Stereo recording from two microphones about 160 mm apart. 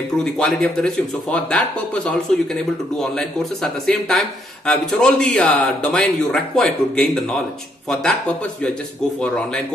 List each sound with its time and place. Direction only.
0.2 s speech: 5° left (ahead or behind)